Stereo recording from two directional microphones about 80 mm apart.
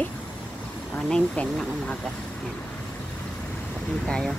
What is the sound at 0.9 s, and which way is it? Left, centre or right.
Speech, centre.